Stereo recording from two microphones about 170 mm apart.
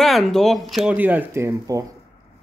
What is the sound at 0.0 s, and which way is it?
Speech, centre (ahead or behind).